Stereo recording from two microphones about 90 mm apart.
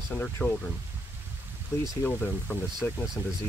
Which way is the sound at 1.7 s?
30° left (ahead or behind).